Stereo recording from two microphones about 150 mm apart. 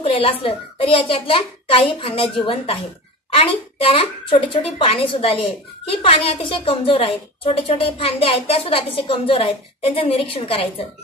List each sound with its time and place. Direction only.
0.0 s a woman's voice: 40° left (ahead or behind)